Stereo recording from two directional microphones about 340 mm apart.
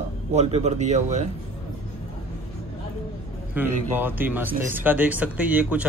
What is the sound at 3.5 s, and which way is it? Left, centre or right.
Speech, centre.